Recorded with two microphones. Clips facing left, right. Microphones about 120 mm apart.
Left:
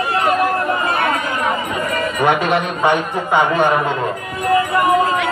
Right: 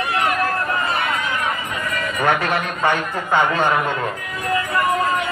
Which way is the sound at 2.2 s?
15° left (ahead or behind).